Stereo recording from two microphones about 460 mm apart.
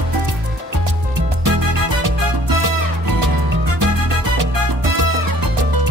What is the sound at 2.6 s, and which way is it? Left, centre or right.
Music, right.